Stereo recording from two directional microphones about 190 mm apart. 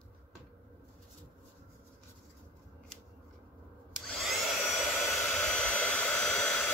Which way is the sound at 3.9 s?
Centre (ahead or behind).